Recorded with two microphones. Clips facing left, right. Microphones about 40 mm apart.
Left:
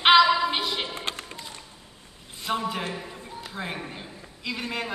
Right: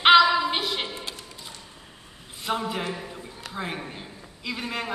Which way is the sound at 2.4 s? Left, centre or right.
Centre.